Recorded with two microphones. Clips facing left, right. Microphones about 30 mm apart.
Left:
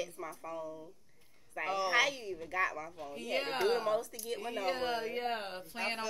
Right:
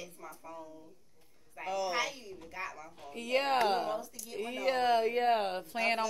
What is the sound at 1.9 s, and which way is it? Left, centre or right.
Speech, left.